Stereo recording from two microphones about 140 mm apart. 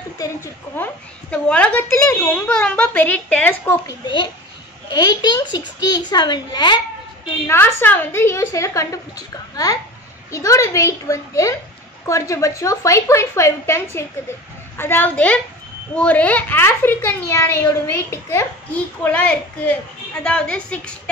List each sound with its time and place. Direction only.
1.3 s a woman's voice: 10° left (ahead or behind)
3.8 s a child's voice: 35° left (ahead or behind)
7.4 s a woman's voice: 15° left (ahead or behind)